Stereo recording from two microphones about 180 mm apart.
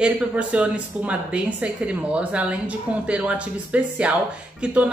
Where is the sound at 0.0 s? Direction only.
5° right (ahead or behind).